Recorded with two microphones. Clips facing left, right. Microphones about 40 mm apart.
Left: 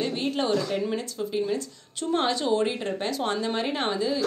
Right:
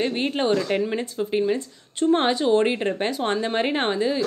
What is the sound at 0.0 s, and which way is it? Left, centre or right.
Speech, right.